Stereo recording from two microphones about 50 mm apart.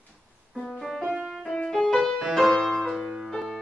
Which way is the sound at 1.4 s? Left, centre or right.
Centre.